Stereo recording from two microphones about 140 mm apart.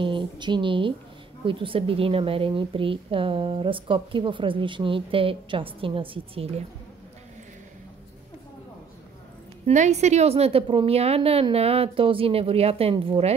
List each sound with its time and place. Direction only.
0.0 s a woman's voice: 35° right (ahead or behind)
9.7 s a woman's voice: 55° right (ahead or behind); by 13.3 s 40° right (ahead or behind)